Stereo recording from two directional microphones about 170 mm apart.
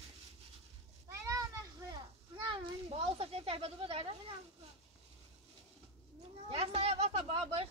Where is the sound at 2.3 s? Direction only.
30° right (ahead or behind).